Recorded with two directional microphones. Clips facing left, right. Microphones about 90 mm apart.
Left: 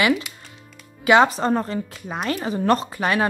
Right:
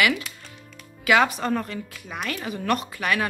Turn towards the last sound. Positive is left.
turn(degrees=30)  # may be behind; listen again after turning